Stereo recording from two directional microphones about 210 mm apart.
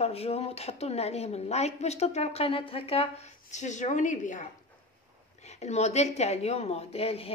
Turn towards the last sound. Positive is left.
turn(degrees=30)  # may be behind; listen again after turning